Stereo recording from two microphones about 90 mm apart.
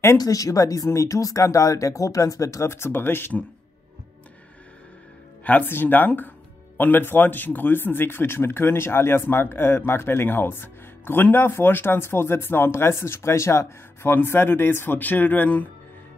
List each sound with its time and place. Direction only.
0.2 s speech: 40° left (ahead or behind); by 3.4 s 20° left (ahead or behind)
5.4 s speech: 20° left (ahead or behind)